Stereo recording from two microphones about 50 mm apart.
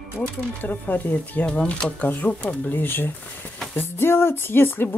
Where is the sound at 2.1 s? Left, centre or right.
Left.